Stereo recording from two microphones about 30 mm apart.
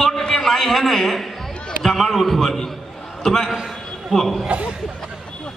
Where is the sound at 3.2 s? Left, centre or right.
Centre.